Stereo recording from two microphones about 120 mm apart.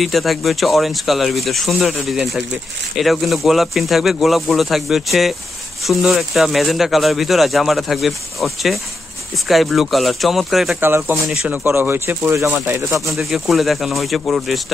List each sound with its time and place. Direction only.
0.0 s speech: centre (ahead or behind)
10.8 s speech: 20° right (ahead or behind)
13.1 s speech: centre (ahead or behind)